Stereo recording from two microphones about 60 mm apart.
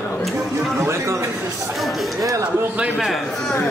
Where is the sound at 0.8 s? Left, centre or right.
Right.